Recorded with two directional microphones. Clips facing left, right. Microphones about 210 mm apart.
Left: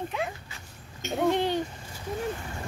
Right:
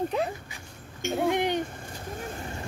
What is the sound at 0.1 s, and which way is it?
Dog, 35° right (ahead or behind).